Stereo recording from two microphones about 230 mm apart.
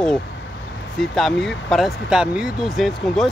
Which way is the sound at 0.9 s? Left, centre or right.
Centre.